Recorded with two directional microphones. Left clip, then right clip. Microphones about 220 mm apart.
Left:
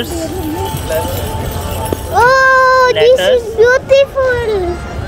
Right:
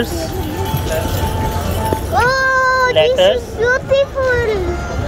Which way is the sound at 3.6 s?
45° left (ahead or behind).